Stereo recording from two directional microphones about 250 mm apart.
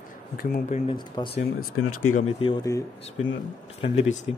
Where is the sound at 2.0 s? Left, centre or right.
Left.